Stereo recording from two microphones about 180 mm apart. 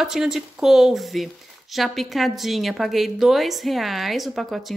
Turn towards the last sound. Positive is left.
turn(degrees=0)  # may be behind; listen again after turning